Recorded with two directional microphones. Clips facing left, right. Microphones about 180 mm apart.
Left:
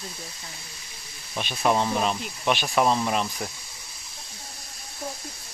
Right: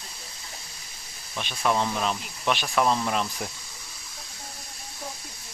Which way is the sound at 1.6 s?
20° left (ahead or behind).